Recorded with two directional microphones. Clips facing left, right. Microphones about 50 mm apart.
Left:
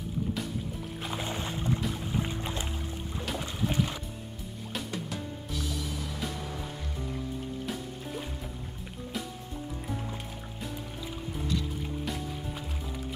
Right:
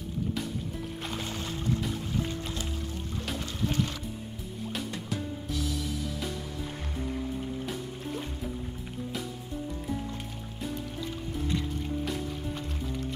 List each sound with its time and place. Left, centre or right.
1.1 s music: centre
3.3 s music: centre
4.7 s music: centre